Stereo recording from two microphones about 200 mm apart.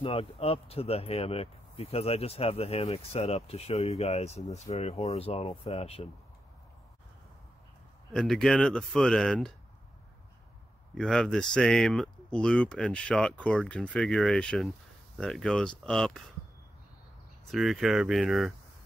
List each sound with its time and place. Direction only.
0.0 s speech: 30° left (ahead or behind)
8.1 s speech: 5° left (ahead or behind)
11.0 s speech: centre (ahead or behind)
17.5 s speech: centre (ahead or behind)